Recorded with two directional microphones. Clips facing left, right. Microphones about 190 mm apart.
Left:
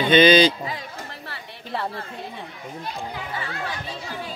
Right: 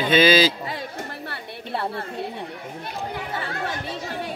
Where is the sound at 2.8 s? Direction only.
60° right (ahead or behind).